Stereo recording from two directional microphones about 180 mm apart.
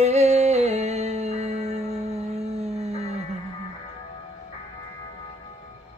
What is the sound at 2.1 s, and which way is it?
Music, 35° right (ahead or behind).